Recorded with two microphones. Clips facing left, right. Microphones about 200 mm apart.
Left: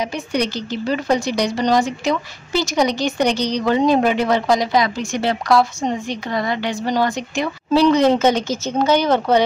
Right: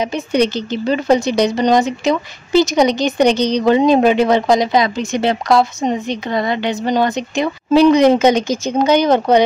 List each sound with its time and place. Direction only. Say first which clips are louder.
0.0 s a woman's voice: right 5 dB; 20° right (ahead or behind)